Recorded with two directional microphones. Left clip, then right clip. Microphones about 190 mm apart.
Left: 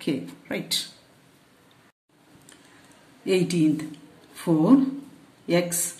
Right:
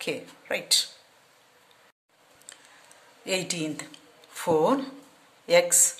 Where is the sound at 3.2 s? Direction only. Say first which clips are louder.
Left 7 dB; 35° right (ahead or behind).